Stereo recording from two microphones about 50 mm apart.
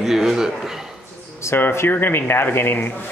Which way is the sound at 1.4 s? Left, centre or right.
Left.